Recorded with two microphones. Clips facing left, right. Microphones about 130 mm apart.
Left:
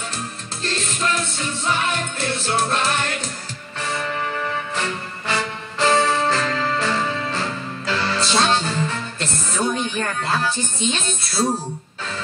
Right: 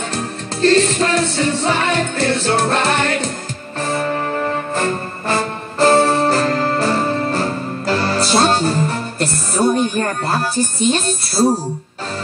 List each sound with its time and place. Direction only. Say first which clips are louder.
0.6 s music: right 13 dB; 65° right (ahead or behind)
3.8 s music: right 6 dB; 40° right (ahead or behind)
9.9 s speech: right 4 dB; 40° right (ahead or behind)
10.5 s speech: right 7 dB; 10° right (ahead or behind)